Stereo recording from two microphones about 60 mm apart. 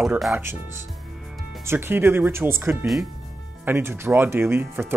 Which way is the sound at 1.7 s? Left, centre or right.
Right.